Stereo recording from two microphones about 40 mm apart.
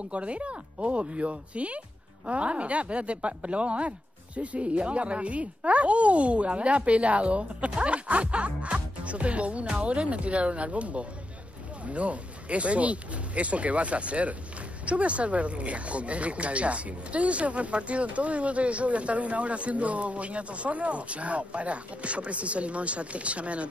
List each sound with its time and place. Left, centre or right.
0.1 s speech: right